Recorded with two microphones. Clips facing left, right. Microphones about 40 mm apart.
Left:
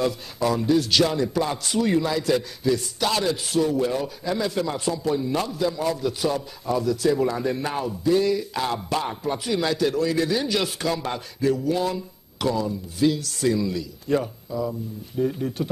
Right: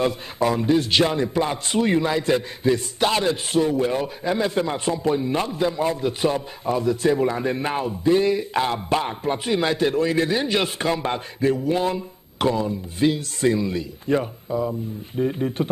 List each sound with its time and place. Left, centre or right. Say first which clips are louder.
0.0 s a man's voice: right 2 dB; right